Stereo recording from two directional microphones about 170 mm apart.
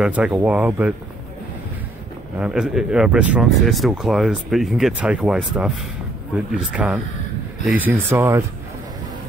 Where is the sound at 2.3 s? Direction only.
5° right (ahead or behind).